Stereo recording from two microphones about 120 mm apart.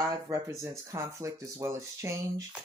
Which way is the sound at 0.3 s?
25° right (ahead or behind).